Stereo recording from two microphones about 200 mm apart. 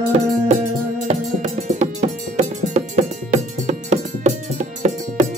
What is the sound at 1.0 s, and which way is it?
Music, 35° right (ahead or behind).